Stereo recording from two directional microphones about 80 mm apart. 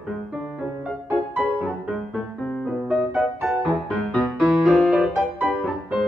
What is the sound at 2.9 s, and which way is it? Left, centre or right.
Music, centre.